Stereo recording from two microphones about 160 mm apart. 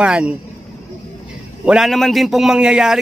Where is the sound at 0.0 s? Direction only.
5° right (ahead or behind).